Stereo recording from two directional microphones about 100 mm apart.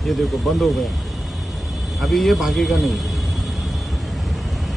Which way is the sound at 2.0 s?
Centre (ahead or behind).